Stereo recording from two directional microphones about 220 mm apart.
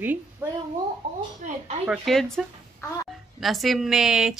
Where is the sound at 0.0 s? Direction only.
10° right (ahead or behind).